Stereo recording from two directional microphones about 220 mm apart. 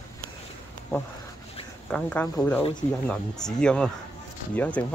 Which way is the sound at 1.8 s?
5° left (ahead or behind).